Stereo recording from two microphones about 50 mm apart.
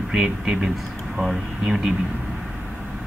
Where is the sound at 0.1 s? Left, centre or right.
Centre.